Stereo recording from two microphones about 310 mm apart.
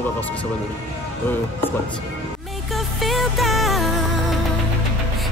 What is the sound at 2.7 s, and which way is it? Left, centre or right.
Music, centre.